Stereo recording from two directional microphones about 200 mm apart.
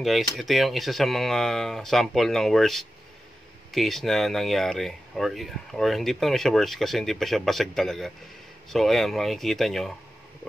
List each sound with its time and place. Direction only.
0.0 s speech: centre (ahead or behind)